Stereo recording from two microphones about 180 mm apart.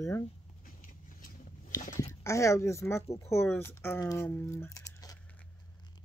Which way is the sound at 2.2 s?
15° left (ahead or behind).